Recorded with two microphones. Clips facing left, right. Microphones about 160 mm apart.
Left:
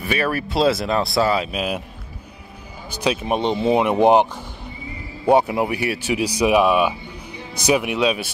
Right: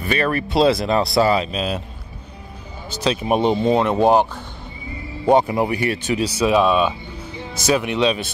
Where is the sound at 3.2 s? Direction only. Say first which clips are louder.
Right 6 dB; 5° right (ahead or behind).